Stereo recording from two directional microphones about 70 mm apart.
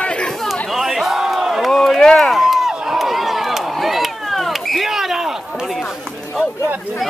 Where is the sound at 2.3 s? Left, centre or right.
Centre.